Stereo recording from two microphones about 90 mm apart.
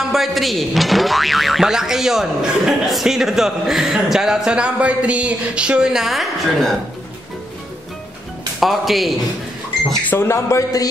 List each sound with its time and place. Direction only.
0.1 s speech: centre (ahead or behind)
8.5 s speech: centre (ahead or behind)
10.0 s speech: 25° left (ahead or behind)